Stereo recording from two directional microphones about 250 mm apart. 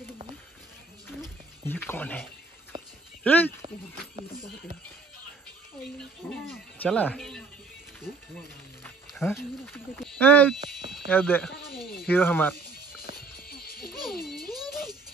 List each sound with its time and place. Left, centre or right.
1.7 s speech: centre
3.3 s speech: centre
5.9 s speech: centre
13.2 s music: left
14.5 s music: centre